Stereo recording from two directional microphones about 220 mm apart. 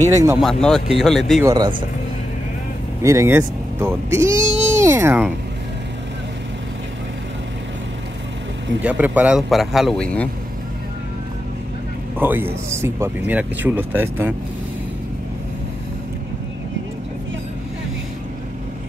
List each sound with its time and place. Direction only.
0.0 s speech: 15° right (ahead or behind)
0.4 s speech: centre (ahead or behind)
1.4 s speech: 20° right (ahead or behind)
3.0 s speech: 15° right (ahead or behind)
4.6 s a sound: 10° right (ahead or behind)
8.8 s speech: 5° right (ahead or behind)
12.2 s speech: 10° right (ahead or behind)